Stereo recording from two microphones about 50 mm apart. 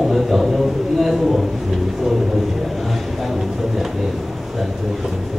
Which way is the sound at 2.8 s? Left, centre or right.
Centre.